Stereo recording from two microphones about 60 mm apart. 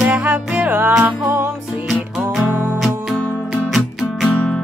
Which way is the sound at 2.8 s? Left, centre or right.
Centre.